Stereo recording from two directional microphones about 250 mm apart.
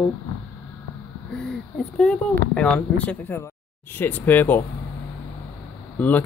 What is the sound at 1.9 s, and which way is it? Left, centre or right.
Speech, centre.